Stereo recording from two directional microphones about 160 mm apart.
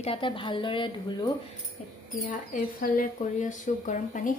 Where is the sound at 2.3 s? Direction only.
60° left (ahead or behind).